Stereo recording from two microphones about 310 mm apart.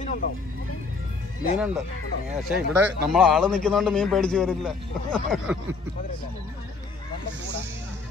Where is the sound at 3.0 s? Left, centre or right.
Centre.